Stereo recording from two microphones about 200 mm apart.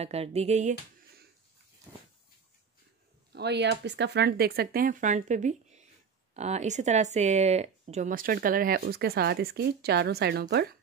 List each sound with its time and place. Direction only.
0.0 s music: 30° right (ahead or behind)
3.3 s speech: 55° right (ahead or behind)